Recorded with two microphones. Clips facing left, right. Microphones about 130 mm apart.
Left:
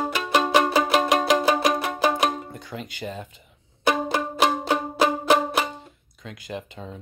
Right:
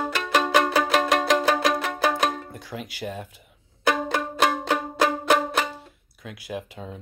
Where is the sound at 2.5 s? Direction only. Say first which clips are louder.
Even; 5° right (ahead or behind).